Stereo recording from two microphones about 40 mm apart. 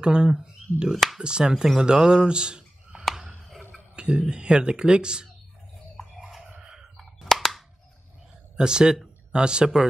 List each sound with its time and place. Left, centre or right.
0.0 s speech: right
0.9 s speech: centre
1.2 s speech: right
3.4 s a sound: centre
3.9 s speech: right
6.2 s a sound: centre
7.0 s cap gun: centre
8.5 s speech: centre